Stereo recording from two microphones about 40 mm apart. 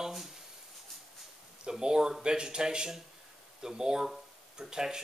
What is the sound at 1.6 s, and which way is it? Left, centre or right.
Speech, centre.